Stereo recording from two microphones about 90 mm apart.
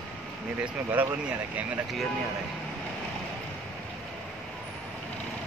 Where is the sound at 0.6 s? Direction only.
15° right (ahead or behind).